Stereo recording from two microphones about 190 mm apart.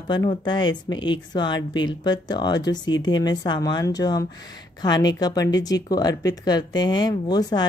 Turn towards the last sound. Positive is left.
turn(degrees=20)  # may be behind; listen again after turning